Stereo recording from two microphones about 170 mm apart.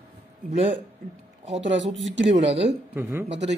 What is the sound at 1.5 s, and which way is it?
Speech, 90° right.